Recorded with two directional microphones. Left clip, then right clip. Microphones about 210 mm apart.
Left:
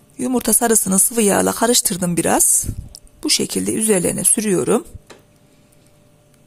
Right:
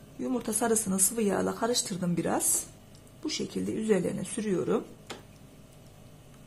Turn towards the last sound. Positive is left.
turn(degrees=45)  # may be behind; listen again after turning